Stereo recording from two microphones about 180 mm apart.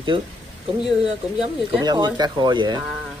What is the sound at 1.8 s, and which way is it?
Speech, 25° right (ahead or behind).